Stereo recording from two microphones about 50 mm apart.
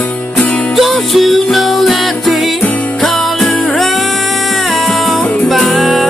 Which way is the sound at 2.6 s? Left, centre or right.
Left.